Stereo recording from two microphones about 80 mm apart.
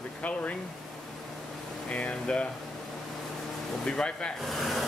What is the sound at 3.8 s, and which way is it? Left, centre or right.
Speech, centre.